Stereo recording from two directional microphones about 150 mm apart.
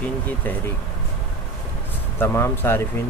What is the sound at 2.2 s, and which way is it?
Speech, 15° left (ahead or behind).